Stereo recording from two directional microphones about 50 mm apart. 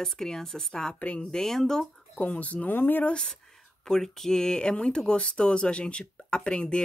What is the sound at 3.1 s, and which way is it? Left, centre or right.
Speech, centre.